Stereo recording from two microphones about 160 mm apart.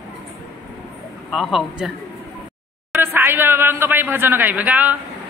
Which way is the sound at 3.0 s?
15° right (ahead or behind).